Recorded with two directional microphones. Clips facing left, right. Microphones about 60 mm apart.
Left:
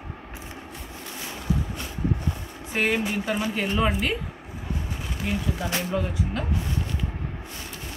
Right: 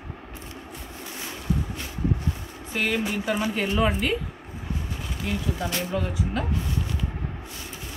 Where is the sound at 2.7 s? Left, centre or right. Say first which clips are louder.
Left 2 dB; left.